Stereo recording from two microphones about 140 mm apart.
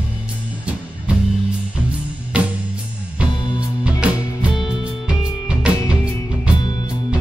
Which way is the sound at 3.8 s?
10° right (ahead or behind).